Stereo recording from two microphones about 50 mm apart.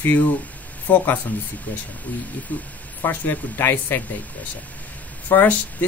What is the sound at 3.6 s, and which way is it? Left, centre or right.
Speech, left.